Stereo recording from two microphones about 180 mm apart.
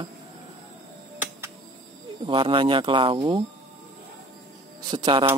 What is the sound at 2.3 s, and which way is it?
Speech, 30° right (ahead or behind).